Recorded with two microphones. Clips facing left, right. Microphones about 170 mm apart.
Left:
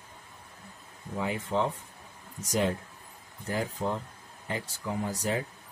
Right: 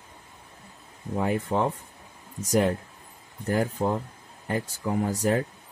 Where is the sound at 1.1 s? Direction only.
50° right (ahead or behind).